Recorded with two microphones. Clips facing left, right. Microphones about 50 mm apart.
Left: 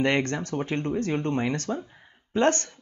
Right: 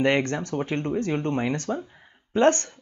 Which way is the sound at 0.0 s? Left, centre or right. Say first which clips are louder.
Right 2 dB; centre.